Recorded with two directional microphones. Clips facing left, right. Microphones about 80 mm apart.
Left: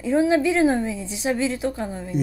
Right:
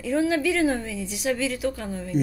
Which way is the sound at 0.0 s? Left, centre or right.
Left.